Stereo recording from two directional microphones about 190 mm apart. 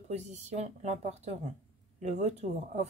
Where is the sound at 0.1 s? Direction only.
35° right (ahead or behind).